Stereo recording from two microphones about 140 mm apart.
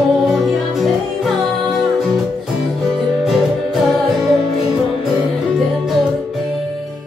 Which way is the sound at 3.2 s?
Centre (ahead or behind).